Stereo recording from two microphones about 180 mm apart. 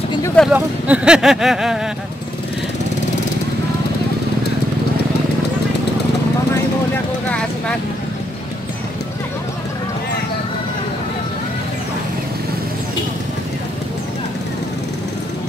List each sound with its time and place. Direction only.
0.4 s speech: 5° right (ahead or behind)
7.2 s vehicle: 5° left (ahead or behind)